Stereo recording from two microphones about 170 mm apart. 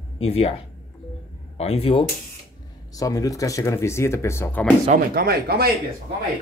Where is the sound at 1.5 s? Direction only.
35° left (ahead or behind).